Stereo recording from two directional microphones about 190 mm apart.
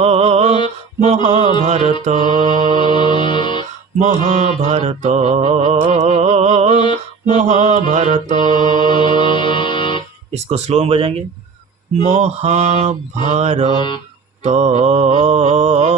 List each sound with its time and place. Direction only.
0.0 s mantra: 35° right (ahead or behind)
2.8 s music: 25° left (ahead or behind)
4.0 s mantra: 40° right (ahead or behind)
8.8 s mantra: 25° left (ahead or behind)
10.3 s mantra: 35° right (ahead or behind)
13.7 s mantra: 25° left (ahead or behind)
14.4 s mantra: 35° right (ahead or behind)